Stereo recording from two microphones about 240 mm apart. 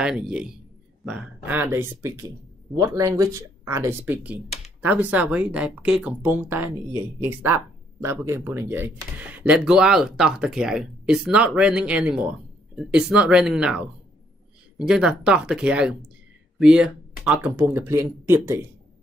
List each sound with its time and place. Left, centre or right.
0.0 s speech: centre